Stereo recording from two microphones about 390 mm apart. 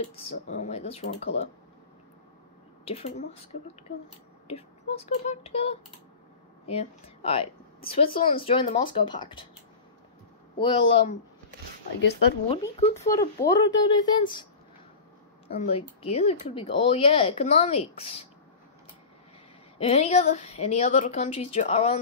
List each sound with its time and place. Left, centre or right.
0.5 s speech: centre
2.8 s a woman's voice: centre
4.5 s speech: centre
10.6 s speech: centre
12.0 s speech: left
12.4 s speech: centre
15.5 s speech: centre
19.8 s speech: centre